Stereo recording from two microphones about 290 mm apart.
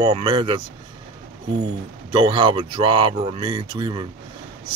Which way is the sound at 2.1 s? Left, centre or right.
Centre.